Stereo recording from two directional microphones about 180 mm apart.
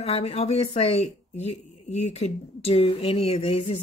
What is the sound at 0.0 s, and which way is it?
Speech, 35° left (ahead or behind).